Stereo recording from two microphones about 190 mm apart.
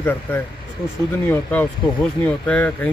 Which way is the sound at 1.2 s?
10° left (ahead or behind).